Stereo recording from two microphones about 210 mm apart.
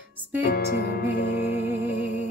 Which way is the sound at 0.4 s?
50° left (ahead or behind).